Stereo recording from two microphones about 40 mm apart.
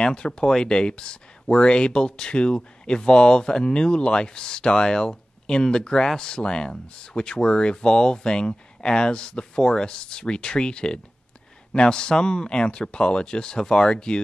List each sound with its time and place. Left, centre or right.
0.0 s speech: left